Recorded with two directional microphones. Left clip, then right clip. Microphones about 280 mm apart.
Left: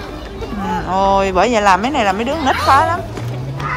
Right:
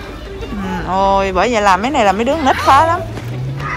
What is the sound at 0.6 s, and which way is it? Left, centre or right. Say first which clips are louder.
Speech: even; centre.